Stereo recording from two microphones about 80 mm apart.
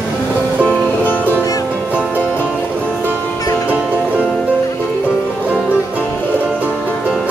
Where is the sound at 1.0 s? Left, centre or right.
Left.